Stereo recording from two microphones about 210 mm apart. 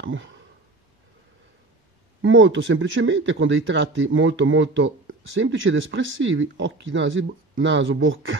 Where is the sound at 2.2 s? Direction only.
65° right (ahead or behind).